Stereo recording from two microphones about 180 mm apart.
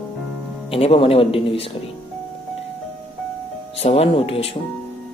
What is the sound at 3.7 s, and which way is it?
Speech, 35° left (ahead or behind).